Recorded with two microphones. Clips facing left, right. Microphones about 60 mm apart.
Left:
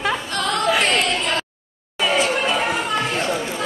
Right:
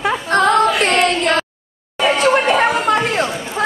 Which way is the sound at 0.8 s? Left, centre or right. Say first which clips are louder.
Right 5 dB; right.